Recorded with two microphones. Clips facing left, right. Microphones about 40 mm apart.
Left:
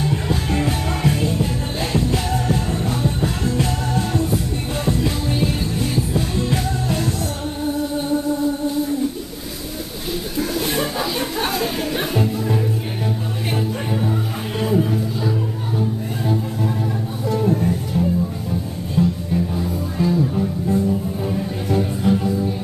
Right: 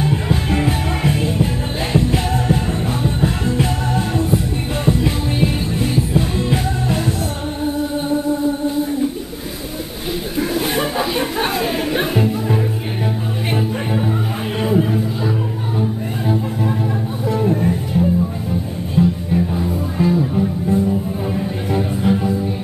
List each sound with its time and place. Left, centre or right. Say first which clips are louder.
0.0 s music: right 3 dB; centre
10.3 s chatter: right 3 dB; centre
13.5 s music: right 2 dB; centre
17.3 s music: right 1 dB; centre